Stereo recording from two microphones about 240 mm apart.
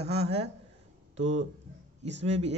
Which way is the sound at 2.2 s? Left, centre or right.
Right.